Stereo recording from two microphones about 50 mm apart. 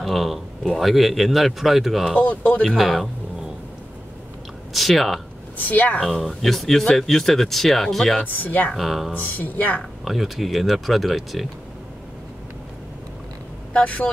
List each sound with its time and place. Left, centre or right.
0.0 s speech: centre
2.1 s speech: left
2.7 s speech: centre
4.7 s speech: centre
5.6 s speech: left
5.9 s speech: centre
8.2 s speech: left
8.7 s speech: centre
9.1 s speech: left
10.0 s speech: centre
13.7 s speech: left